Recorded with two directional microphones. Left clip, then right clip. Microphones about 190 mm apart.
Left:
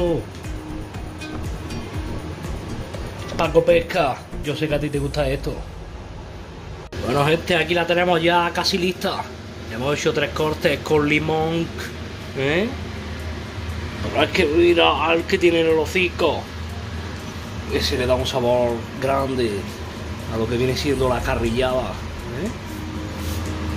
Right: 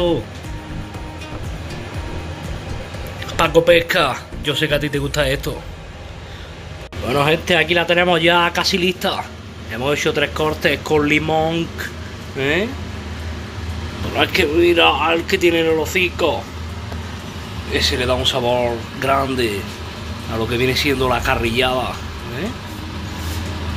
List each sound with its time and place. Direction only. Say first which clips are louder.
3.3 s speech: right 4 dB; 5° right (ahead or behind)
7.1 s a man's voice: right 3 dB; 5° right (ahead or behind)
14.1 s speech: right 2 dB; centre (ahead or behind)
17.7 s speech: right 2 dB; centre (ahead or behind)